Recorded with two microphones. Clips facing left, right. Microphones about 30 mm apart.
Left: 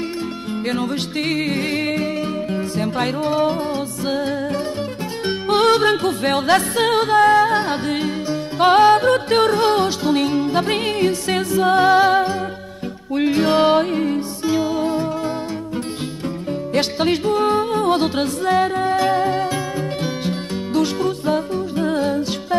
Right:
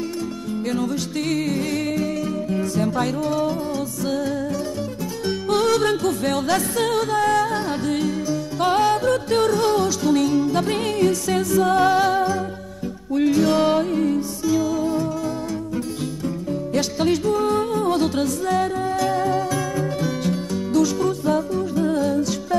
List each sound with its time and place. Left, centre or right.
0.7 s music: left
16.7 s music: left